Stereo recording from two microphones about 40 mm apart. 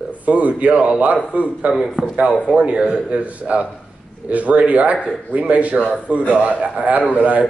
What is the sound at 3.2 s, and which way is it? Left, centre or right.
A man's voice, right.